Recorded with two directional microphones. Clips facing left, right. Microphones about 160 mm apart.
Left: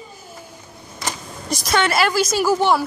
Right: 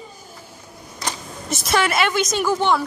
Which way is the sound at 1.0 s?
Centre (ahead or behind).